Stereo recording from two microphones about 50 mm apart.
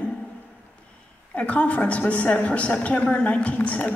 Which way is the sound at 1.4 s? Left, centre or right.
Left.